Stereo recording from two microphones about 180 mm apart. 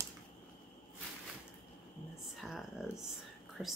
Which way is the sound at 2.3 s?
Centre (ahead or behind).